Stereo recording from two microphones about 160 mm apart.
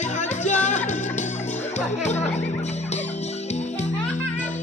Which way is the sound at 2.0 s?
45° left (ahead or behind).